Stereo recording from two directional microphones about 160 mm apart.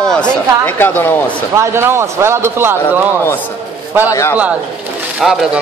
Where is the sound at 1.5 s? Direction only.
15° right (ahead or behind).